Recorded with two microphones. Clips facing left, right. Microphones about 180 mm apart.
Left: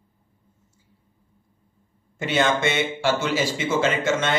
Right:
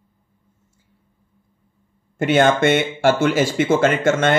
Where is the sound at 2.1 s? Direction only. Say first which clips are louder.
Right 6 dB; 55° right (ahead or behind).